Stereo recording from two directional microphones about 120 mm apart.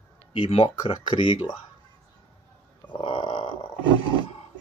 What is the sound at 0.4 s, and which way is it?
Speech, 50° left (ahead or behind).